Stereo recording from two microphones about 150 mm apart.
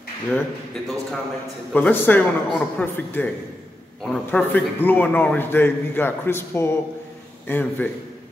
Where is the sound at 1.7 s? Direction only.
10° left (ahead or behind).